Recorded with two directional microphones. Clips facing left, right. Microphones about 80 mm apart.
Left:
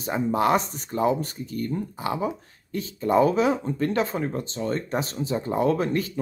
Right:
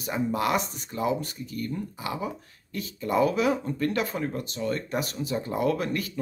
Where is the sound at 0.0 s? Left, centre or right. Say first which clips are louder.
Left 4 dB; left.